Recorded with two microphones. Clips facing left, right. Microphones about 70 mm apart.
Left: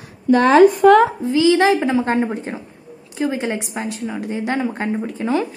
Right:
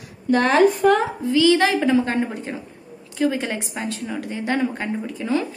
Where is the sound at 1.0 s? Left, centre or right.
Left.